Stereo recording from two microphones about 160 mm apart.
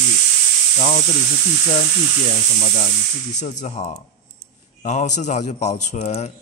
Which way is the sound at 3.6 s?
45° left (ahead or behind).